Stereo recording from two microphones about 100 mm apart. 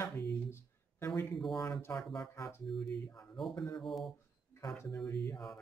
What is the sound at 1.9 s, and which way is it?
Speech, 5° left (ahead or behind).